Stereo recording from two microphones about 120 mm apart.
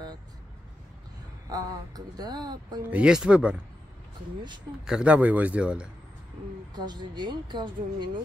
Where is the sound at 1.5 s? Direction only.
30° right (ahead or behind).